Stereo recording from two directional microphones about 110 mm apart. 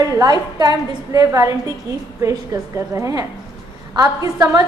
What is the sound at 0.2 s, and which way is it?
A woman's voice, 40° right (ahead or behind).